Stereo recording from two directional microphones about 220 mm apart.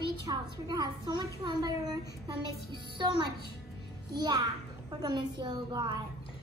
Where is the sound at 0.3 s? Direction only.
20° right (ahead or behind).